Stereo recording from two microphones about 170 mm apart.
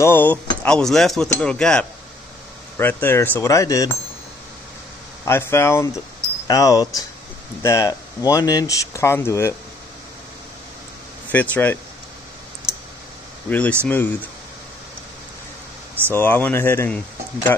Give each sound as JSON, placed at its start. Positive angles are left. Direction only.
{"t": 0.0, "sound": "speech", "side_deg": 10}
{"t": 5.2, "sound": "speech", "side_deg": 15}
{"t": 11.3, "sound": "speech", "side_deg": 10}
{"t": 13.5, "sound": "speech", "side_deg": 10}
{"t": 16.1, "sound": "speech", "side_deg": 10}